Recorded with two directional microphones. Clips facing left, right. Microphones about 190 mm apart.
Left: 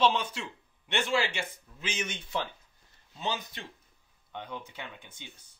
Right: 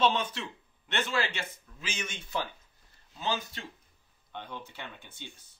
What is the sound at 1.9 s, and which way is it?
Speech, 25° left (ahead or behind).